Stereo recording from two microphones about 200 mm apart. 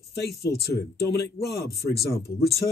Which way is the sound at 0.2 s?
55° left (ahead or behind).